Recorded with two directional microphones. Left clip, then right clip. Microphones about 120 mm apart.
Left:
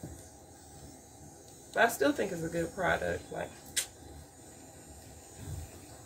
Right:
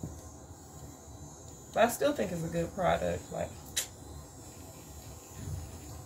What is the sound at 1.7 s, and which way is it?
Speech, 20° left (ahead or behind).